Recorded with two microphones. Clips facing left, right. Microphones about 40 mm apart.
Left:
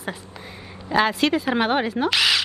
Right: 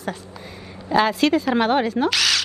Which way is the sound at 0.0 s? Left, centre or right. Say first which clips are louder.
Right 2 dB; centre.